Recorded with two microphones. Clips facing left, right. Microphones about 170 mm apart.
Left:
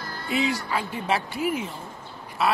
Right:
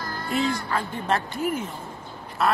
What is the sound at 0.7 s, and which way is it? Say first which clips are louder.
Speech: right 1 dB; 10° left (ahead or behind).